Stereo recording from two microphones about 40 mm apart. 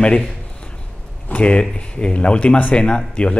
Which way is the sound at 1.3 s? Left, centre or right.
Left.